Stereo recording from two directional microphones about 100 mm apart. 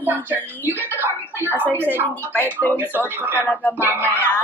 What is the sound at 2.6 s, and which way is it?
Speech, 20° left (ahead or behind).